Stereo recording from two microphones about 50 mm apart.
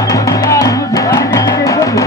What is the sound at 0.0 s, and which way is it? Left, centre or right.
Music, left.